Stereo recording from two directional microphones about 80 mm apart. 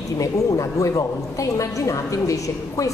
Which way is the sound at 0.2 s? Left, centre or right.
Left.